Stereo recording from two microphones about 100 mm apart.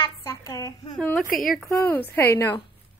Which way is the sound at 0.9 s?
10° left (ahead or behind).